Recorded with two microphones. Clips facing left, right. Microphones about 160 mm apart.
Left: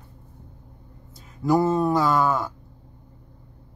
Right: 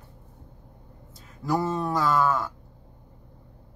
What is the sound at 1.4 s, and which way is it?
Speech, 10° left (ahead or behind).